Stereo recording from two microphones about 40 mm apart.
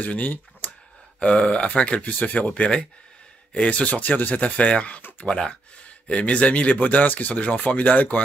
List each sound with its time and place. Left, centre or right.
0.0 s speech: left
1.2 s speech: left
3.5 s speech: left
5.2 s speech: left
6.0 s speech: left